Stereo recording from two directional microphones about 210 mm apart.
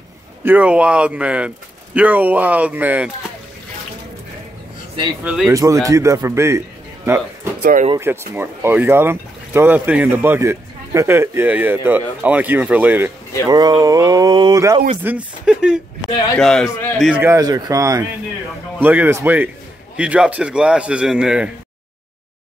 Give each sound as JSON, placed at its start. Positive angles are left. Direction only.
{"t": 0.5, "sound": "a man's voice", "side_deg": -5}
{"t": 5.2, "sound": "a man's voice", "side_deg": 0}
{"t": 5.5, "sound": "speech", "side_deg": -15}
{"t": 7.6, "sound": "speech", "side_deg": -40}
{"t": 7.9, "sound": "speech", "side_deg": -10}
{"t": 13.5, "sound": "speech", "side_deg": -20}
{"t": 15.0, "sound": "a man's voice", "side_deg": -5}
{"t": 17.0, "sound": "a man's voice", "side_deg": -10}